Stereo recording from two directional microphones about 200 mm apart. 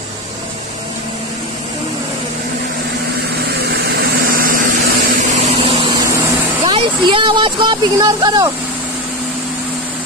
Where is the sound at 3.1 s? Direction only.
50° right (ahead or behind); by 5.9 s 30° right (ahead or behind).